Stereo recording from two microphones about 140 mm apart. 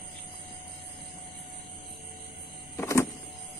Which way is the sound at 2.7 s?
20° left (ahead or behind).